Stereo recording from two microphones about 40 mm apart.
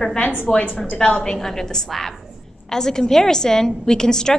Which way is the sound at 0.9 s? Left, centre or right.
Centre.